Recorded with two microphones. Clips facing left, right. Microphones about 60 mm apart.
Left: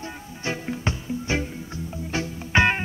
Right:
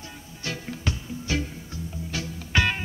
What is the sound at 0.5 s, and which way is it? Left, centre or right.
Music, left.